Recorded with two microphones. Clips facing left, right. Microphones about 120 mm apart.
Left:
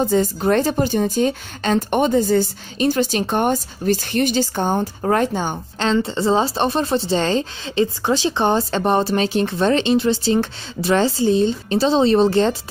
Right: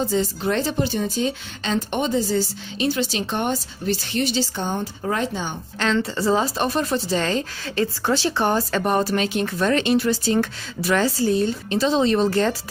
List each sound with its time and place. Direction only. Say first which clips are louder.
0.0 s speech: left 5 dB; 50° left (ahead or behind)
5.9 s speech: left 3 dB; 25° left (ahead or behind)